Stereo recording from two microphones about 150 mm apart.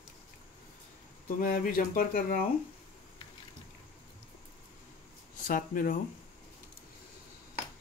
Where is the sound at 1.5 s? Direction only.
70° left (ahead or behind).